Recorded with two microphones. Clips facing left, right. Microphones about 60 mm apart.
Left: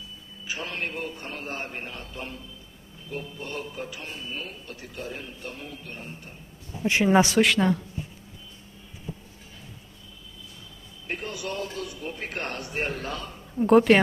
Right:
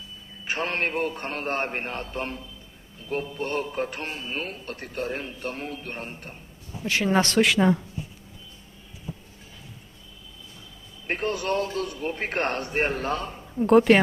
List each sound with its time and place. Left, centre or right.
0.5 s a man's voice: right
6.9 s speech: centre
7.3 s speech: centre
11.1 s a man's voice: right
13.6 s speech: centre